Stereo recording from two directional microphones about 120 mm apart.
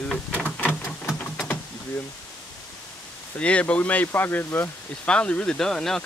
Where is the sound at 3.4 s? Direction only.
10° left (ahead or behind).